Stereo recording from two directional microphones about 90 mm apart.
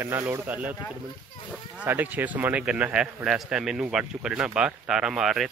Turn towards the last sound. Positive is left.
turn(degrees=-5)  # may be behind; listen again after turning